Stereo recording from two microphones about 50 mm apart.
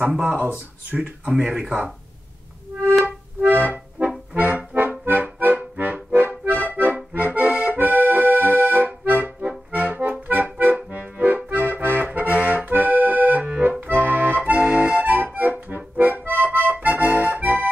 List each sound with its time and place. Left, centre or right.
0.3 s speech: right
1.3 s speech: centre
3.4 s accordion: right
13.7 s accordion: right
15.0 s music: right
15.3 s accordion: right